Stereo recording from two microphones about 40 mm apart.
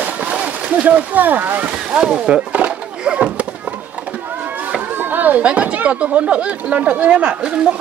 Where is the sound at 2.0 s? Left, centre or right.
Centre.